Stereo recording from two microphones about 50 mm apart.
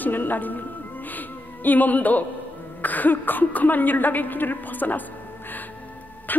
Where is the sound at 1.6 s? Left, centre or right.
Left.